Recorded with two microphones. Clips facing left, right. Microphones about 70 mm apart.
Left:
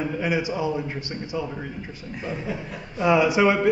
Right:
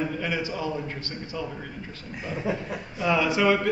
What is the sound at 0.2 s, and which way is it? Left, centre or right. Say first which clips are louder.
Speech: left 4 dB; centre.